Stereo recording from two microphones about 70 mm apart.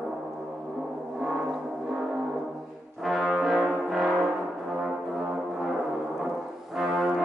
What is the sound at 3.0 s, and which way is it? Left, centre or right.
Brass instrument, centre.